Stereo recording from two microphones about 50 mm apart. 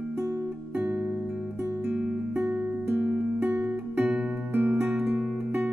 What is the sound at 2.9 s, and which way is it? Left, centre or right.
Music, right.